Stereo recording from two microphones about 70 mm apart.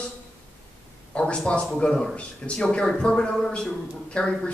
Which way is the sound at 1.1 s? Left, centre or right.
Centre.